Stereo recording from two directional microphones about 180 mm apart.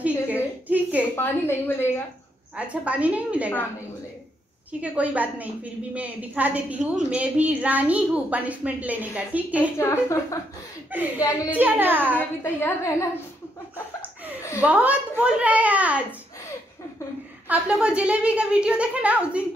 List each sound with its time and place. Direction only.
0.3 s a sound: 10° right (ahead or behind)
1.1 s a woman's voice: 15° left (ahead or behind)
2.5 s a woman's voice: 5° right (ahead or behind)
4.8 s a woman's voice: 10° right (ahead or behind)
9.8 s a woman's voice: 15° left (ahead or behind)
11.5 s a woman's voice: 10° right (ahead or behind)
12.2 s a woman's voice: 10° left (ahead or behind)
14.6 s a woman's voice: 5° right (ahead or behind)
17.5 s a woman's voice: 5° right (ahead or behind)